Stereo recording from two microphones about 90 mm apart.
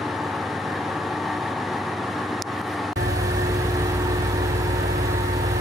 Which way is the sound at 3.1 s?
40° right (ahead or behind).